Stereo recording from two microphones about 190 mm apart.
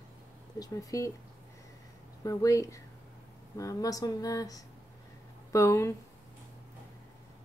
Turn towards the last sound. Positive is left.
turn(degrees=15)  # may be behind; listen again after turning